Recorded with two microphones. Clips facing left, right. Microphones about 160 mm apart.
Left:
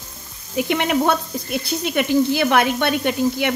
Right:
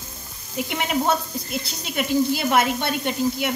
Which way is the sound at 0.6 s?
70° left (ahead or behind).